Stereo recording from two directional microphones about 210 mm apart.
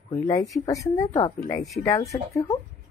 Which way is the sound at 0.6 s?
15° left (ahead or behind).